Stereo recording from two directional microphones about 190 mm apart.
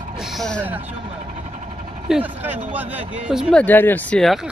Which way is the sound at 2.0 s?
5° right (ahead or behind).